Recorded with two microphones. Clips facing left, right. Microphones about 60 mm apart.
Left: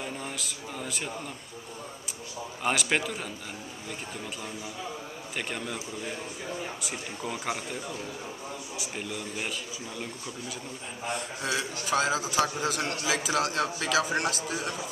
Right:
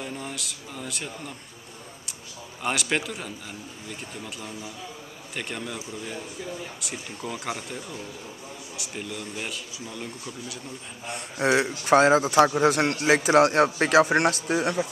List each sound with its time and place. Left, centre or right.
0.0 s speech: centre
2.6 s speech: centre
5.3 s speech: centre
7.2 s speech: centre
8.9 s speech: centre
11.1 s a man's voice: right